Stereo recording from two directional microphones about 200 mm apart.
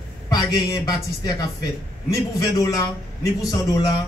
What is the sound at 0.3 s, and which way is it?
A man's voice, 20° left (ahead or behind).